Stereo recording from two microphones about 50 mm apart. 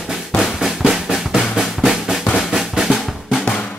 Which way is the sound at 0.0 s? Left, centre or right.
Centre.